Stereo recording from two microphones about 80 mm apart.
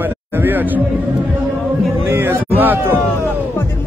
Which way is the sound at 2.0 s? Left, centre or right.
Right.